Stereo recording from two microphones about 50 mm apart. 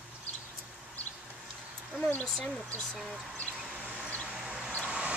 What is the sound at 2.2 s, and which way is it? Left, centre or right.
Speech, centre.